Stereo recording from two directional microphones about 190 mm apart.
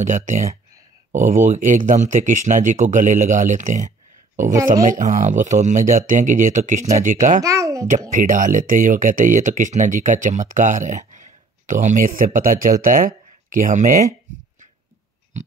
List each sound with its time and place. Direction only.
0.0 s speech: 40° right (ahead or behind)
7.4 s a sound: 15° right (ahead or behind)
8.1 s speech: 45° right (ahead or behind)